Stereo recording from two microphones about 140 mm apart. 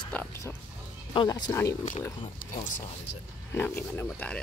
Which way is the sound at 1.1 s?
30° left (ahead or behind).